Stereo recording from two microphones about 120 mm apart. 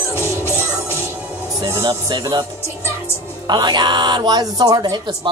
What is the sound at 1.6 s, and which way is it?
Speech, 25° right (ahead or behind).